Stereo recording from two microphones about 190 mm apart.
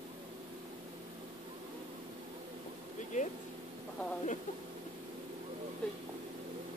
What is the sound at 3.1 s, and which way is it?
Speech, 40° left (ahead or behind).